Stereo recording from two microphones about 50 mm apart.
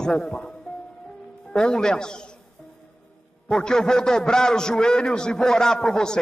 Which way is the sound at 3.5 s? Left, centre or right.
Centre.